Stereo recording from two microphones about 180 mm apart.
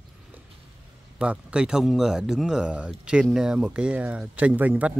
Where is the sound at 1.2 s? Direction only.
5° right (ahead or behind).